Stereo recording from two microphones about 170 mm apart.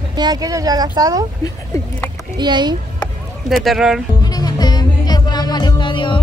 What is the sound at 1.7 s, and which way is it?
Speech, 20° left (ahead or behind).